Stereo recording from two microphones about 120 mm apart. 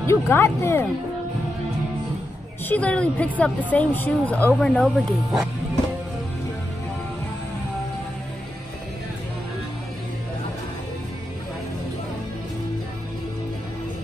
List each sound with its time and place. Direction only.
0.0 s speech: 20° left (ahead or behind)
2.7 s speech: 10° left (ahead or behind)